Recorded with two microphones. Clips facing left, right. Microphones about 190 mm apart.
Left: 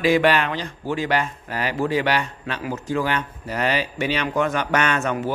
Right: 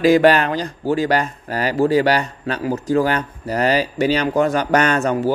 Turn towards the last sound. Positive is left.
turn(degrees=-35)  # may be behind; listen again after turning